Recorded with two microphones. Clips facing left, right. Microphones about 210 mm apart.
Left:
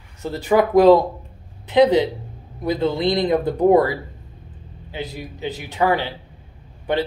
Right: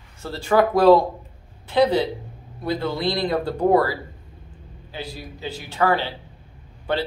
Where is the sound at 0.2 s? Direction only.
15° left (ahead or behind).